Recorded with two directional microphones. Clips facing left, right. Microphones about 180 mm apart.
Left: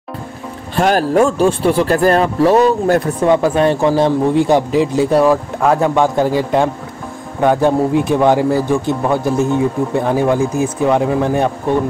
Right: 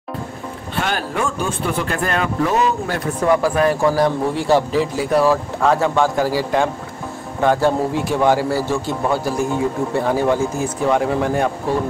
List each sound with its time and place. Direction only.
0.7 s speech: 40° left (ahead or behind)
3.3 s speech: 25° left (ahead or behind)
5.3 s speech: 15° left (ahead or behind)